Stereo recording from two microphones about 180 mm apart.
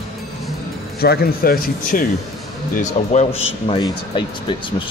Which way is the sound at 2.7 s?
40° left (ahead or behind).